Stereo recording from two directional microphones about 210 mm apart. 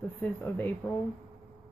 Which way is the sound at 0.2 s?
10° left (ahead or behind).